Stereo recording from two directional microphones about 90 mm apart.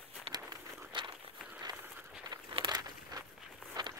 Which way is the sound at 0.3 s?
55° right (ahead or behind).